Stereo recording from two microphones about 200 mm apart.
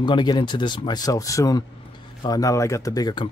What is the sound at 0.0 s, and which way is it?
Speech, 20° left (ahead or behind).